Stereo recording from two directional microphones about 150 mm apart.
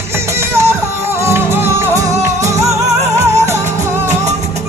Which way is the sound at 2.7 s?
45° right (ahead or behind).